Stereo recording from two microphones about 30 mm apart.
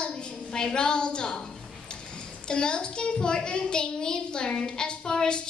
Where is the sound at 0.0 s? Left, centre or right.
Left.